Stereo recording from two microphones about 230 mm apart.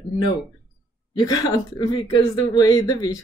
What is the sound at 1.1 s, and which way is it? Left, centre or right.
Speech, centre.